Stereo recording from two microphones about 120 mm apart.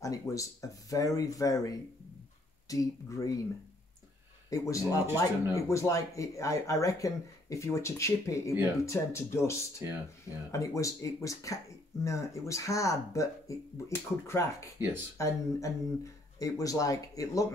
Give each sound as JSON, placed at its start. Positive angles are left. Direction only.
{"t": 0.0, "sound": "speech", "side_deg": 25}
{"t": 2.7, "sound": "speech", "side_deg": 30}
{"t": 4.5, "sound": "speech", "side_deg": 25}
{"t": 9.8, "sound": "speech", "side_deg": -25}
{"t": 10.5, "sound": "speech", "side_deg": 25}